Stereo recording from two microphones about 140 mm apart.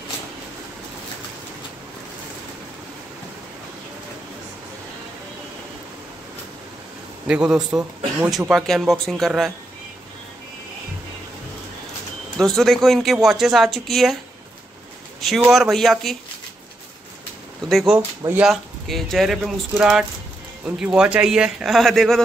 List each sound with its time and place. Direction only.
7.2 s speech: 5° right (ahead or behind)
12.4 s speech: centre (ahead or behind)
15.1 s speech: centre (ahead or behind)
17.6 s speech: centre (ahead or behind)
17.9 s speech: 15° right (ahead or behind)
18.5 s speech: centre (ahead or behind)